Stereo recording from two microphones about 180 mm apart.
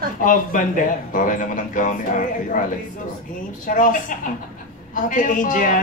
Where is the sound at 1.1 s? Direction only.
45° left (ahead or behind).